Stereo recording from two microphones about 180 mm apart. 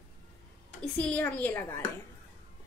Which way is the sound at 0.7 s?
5° left (ahead or behind).